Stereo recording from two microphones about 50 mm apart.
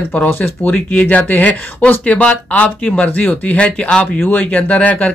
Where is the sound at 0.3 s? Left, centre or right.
Left.